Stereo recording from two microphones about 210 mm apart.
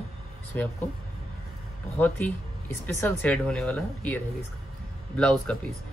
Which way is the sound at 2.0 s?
10° left (ahead or behind).